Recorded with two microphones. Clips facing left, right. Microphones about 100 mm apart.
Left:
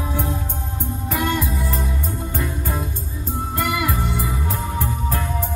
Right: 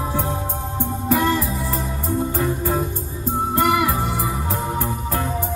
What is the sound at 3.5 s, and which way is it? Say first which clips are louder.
Music: right 4 dB; 30° right (ahead or behind).